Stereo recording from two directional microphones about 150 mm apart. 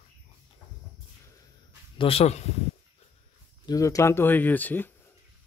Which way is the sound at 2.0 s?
40° left (ahead or behind).